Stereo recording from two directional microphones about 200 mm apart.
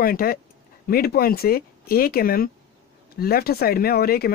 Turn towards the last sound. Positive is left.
turn(degrees=50)  # may be behind; listen again after turning